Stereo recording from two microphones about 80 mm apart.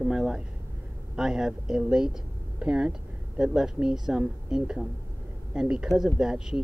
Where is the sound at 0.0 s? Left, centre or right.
Centre.